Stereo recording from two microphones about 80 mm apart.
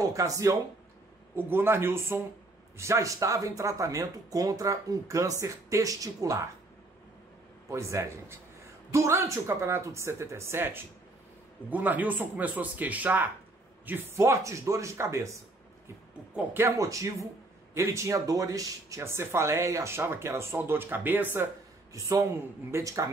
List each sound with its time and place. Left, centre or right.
0.0 s speech: right
1.3 s a man's voice: right
7.7 s a man's voice: right
14.1 s speech: right
16.6 s speech: right
21.9 s speech: right